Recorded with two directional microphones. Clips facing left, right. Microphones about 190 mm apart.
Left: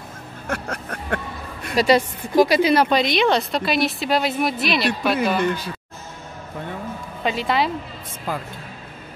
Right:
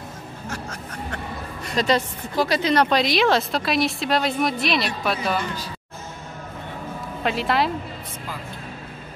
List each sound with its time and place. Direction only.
0.5 s speech: 60° left (ahead or behind)
1.8 s a woman's voice: 10° left (ahead or behind)
7.2 s a woman's voice: centre (ahead or behind)